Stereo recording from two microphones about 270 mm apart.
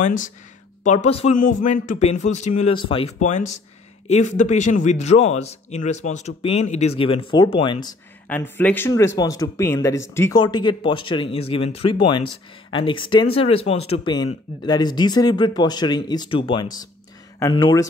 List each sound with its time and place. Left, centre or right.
0.0 s a man's voice: left
8.3 s a man's voice: centre